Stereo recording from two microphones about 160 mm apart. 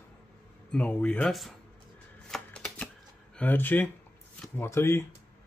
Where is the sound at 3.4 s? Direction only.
10° left (ahead or behind).